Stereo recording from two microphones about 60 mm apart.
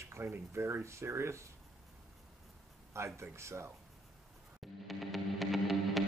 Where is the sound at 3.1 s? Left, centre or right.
Right.